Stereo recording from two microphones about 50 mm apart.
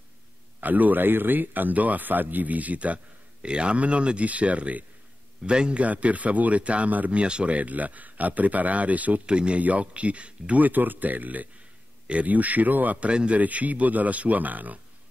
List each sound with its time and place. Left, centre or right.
0.6 s a man's voice: right
9.2 s a man's voice: centre